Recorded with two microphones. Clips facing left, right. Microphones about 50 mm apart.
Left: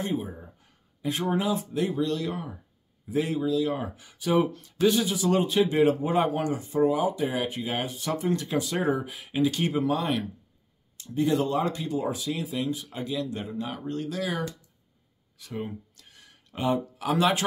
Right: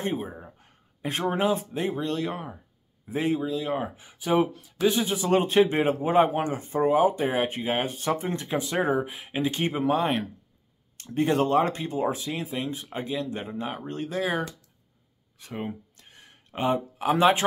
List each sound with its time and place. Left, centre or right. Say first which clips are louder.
0.0 s a sound: even; right
1.3 s speech: right 2 dB; right
4.5 s speech: left 2 dB; centre
4.8 s speech: left 1 dB; right
5.1 s speech: right 2 dB; right
11.0 s speech: right 1 dB; right
15.3 s a sound: right 1 dB; right